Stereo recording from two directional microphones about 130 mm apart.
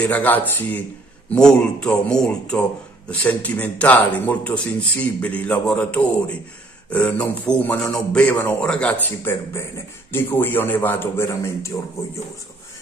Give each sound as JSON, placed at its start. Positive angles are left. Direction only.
{"t": 0.0, "sound": "a man's voice", "side_deg": 15}